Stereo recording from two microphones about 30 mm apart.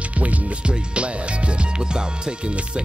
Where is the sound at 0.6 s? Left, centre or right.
Right.